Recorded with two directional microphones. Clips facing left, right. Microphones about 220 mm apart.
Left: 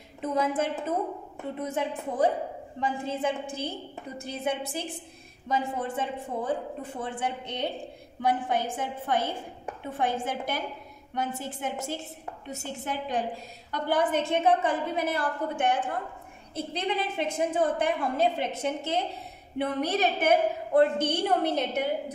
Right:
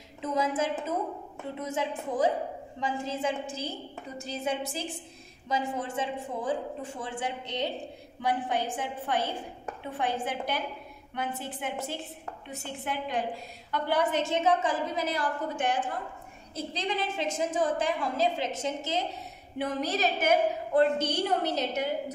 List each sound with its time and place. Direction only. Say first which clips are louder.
0.2 s a woman's voice: left 2 dB; 55° left (ahead or behind)